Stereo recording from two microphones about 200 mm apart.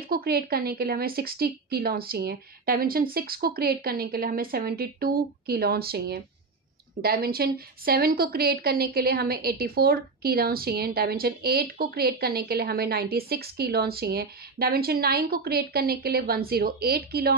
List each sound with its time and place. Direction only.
0.1 s a woman's voice: 50° right (ahead or behind)